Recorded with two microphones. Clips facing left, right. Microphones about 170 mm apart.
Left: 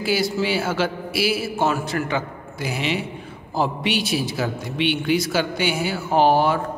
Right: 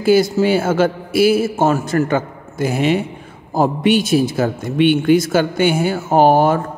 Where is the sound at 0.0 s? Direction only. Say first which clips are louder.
Right 9 dB; 45° right (ahead or behind).